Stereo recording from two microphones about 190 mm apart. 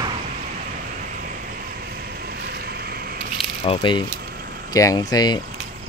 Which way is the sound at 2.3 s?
55° right (ahead or behind).